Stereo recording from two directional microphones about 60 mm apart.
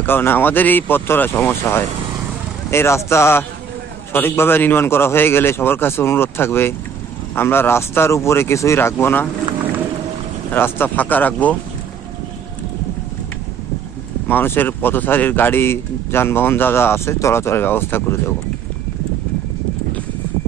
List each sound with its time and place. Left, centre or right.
0.0 s speech: left
10.5 s speech: left
14.2 s speech: left